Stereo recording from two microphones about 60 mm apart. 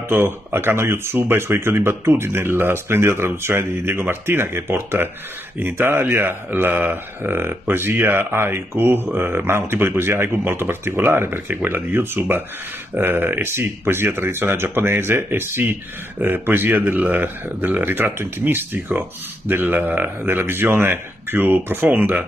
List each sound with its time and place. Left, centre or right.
0.1 s speech: right
16.8 s speech: right